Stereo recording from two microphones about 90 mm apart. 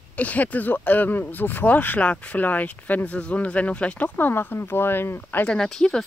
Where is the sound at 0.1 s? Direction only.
15° left (ahead or behind).